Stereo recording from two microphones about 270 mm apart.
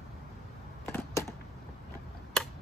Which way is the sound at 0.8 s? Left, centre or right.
Centre.